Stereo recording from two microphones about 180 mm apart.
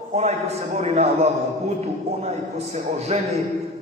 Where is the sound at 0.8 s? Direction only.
40° right (ahead or behind).